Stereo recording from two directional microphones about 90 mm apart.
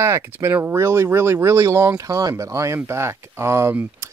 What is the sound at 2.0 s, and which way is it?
Speech, 40° right (ahead or behind).